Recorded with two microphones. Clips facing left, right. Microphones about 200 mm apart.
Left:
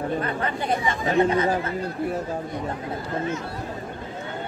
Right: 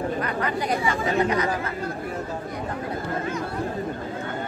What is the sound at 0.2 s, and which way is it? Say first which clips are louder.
Speech: right 1 dB; 30° left (ahead or behind).